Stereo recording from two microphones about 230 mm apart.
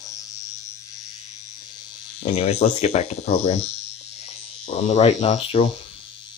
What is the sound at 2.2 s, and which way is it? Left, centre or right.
Speech, left.